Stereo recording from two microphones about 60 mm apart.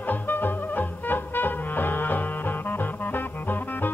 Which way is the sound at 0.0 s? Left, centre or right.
Left.